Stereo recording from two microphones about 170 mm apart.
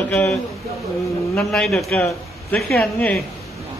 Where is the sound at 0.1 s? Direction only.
5° left (ahead or behind).